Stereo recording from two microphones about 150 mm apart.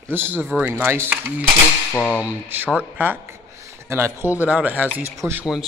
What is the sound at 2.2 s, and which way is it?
A man's voice, 10° right (ahead or behind).